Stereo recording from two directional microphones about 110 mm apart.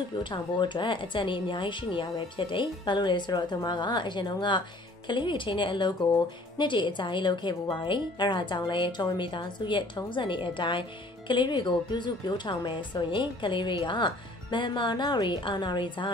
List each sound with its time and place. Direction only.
0.2 s a woman's voice: 45° left (ahead or behind)